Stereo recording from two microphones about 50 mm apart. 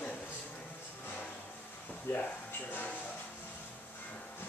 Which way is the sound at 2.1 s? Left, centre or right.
Left.